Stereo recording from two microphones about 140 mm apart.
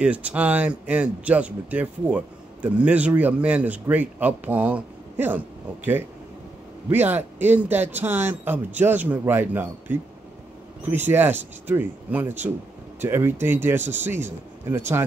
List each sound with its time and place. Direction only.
0.0 s speech: 10° right (ahead or behind)
6.9 s speech: 15° right (ahead or behind)